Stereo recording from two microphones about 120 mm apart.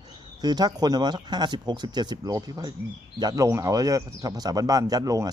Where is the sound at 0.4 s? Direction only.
35° right (ahead or behind).